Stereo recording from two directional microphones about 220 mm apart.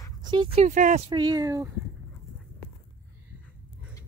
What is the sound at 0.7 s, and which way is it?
Speech, 35° right (ahead or behind).